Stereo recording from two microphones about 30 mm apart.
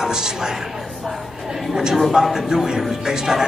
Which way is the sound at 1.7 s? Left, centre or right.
Right.